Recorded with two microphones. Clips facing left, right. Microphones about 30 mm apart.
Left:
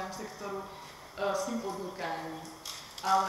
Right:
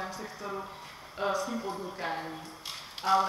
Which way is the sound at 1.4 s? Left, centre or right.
Right.